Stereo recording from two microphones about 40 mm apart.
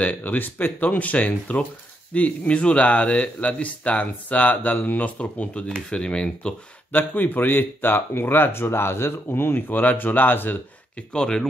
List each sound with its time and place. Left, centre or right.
0.0 s speech: left
0.8 s speech: left
5.9 s speech: left
6.9 s speech: left
11.1 s speech: centre